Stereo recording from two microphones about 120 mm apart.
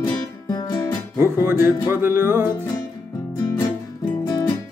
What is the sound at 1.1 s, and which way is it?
Music, 20° right (ahead or behind).